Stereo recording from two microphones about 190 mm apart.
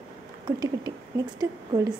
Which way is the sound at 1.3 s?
15° right (ahead or behind).